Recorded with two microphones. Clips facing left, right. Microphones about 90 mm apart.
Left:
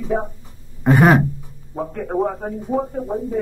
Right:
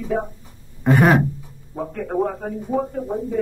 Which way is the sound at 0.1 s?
20° left (ahead or behind).